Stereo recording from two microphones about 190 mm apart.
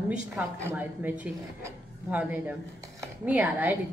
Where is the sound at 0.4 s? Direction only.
10° right (ahead or behind).